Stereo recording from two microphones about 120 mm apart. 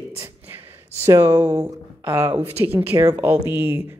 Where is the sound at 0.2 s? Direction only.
20° right (ahead or behind).